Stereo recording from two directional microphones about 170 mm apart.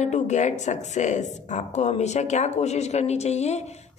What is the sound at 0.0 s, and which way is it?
A woman's voice, 45° left (ahead or behind).